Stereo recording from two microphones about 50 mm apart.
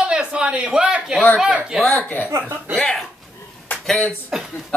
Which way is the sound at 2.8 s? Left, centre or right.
Centre.